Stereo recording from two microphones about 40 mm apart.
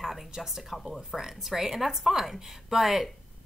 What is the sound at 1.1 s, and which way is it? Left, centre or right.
A woman's voice, centre.